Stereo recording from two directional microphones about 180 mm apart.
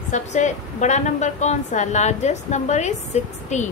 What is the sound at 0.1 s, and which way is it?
A woman's voice, 40° left (ahead or behind).